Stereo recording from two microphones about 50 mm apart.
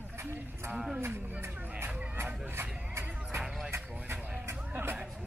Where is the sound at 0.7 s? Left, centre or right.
Centre.